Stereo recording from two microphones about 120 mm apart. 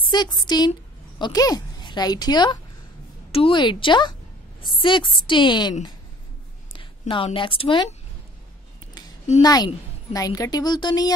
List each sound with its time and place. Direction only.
0.0 s a woman's voice: 35° left (ahead or behind)
3.3 s a woman's voice: 50° left (ahead or behind)
6.7 s a sound: 45° left (ahead or behind)
7.3 s a woman's voice: 45° left (ahead or behind)
9.4 s a woman's voice: 35° left (ahead or behind)